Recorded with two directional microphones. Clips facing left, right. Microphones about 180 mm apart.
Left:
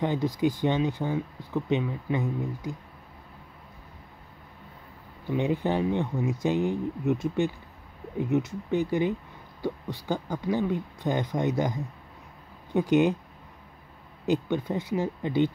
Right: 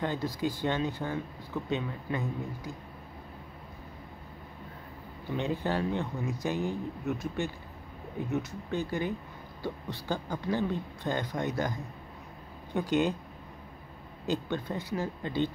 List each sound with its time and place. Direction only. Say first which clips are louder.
0.0 s speech: left 6 dB; 15° left (ahead or behind)
5.3 s speech: left 5 dB; 15° left (ahead or behind)
14.2 s speech: left 5 dB; 15° left (ahead or behind)